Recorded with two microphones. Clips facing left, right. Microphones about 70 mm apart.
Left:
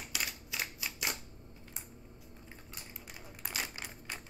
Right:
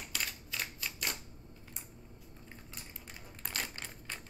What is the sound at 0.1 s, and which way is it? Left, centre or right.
Camera, centre.